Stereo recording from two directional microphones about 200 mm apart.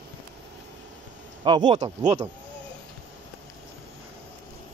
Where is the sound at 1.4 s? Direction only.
20° right (ahead or behind).